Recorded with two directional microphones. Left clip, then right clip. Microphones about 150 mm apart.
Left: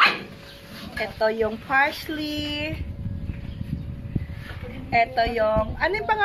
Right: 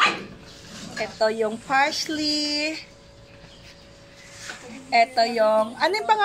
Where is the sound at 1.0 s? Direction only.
15° right (ahead or behind).